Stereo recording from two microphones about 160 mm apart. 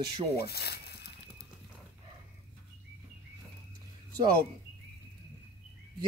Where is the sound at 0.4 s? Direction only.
80° left.